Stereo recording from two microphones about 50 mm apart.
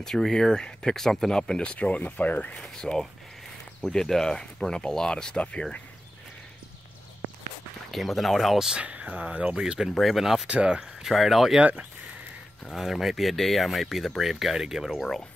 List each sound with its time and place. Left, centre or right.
0.0 s speech: centre; by 2.5 s left
2.5 s speech: centre
7.9 s speech: centre
8.7 s speech: right
9.6 s speech: centre
10.5 s speech: right
10.8 s speech: centre
12.7 s speech: centre
15.0 s speech: centre